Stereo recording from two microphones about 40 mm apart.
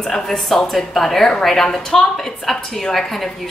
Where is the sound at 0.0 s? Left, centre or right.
Centre.